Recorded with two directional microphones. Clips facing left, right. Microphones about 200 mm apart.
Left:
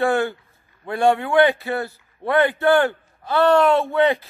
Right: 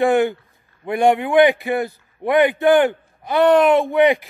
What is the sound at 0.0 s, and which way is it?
A man's voice, 15° right (ahead or behind).